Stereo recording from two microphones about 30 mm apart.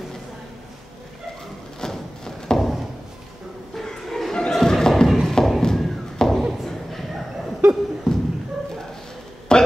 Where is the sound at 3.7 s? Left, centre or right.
Centre.